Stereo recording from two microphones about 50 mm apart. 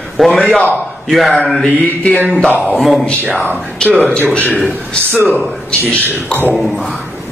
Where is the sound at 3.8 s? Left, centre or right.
Left.